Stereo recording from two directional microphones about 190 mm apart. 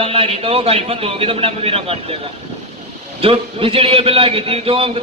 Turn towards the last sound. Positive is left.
turn(degrees=-30)  # may be behind; listen again after turning